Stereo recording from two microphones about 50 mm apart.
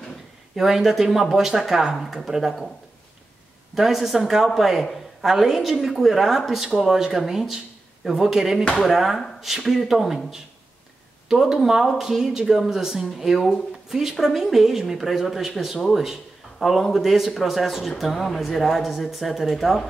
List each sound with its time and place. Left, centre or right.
0.6 s a woman's voice: centre
3.7 s a woman's voice: centre